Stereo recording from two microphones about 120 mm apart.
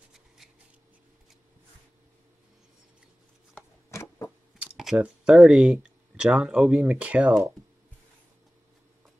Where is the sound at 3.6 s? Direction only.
25° left (ahead or behind).